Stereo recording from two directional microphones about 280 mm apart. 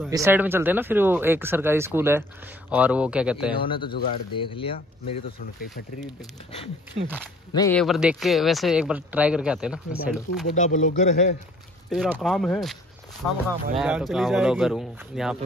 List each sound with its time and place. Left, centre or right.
0.1 s speech: centre
3.6 s speech: centre
7.5 s speech: centre
7.8 s speech: centre
10.5 s speech: left
11.9 s speech: centre
13.7 s speech: centre